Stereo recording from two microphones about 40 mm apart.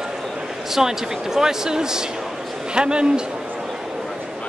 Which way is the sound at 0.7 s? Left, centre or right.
Centre.